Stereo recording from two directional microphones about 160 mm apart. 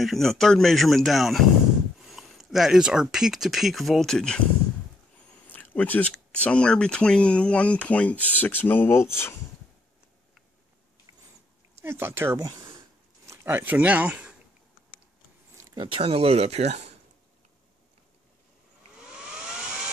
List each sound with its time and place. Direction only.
0.0 s a man's voice: centre (ahead or behind)
5.5 s speech: 10° left (ahead or behind)
11.8 s speech: 15° right (ahead or behind)
15.5 s speech: 30° right (ahead or behind)